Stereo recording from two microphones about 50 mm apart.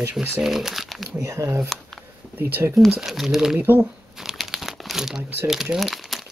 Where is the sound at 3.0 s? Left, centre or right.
Centre.